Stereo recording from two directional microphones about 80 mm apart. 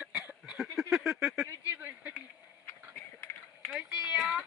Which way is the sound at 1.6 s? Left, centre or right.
Right.